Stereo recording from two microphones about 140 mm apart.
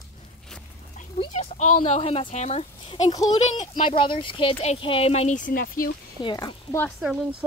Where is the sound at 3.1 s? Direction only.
25° left (ahead or behind).